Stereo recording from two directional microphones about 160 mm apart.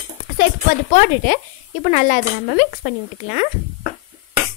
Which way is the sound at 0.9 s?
60° left (ahead or behind).